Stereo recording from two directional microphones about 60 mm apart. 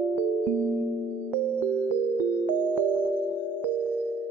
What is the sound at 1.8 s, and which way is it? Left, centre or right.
Music, left.